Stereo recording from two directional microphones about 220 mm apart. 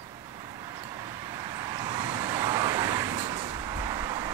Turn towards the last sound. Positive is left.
turn(degrees=-15)  # may be behind; listen again after turning